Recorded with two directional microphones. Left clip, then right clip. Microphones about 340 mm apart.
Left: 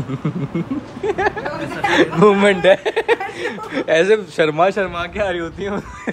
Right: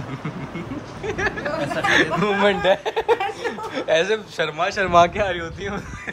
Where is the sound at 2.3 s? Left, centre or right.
Left.